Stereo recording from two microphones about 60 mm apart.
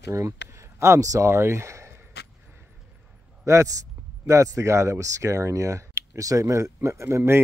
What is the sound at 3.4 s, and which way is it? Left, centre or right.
A man's voice, right.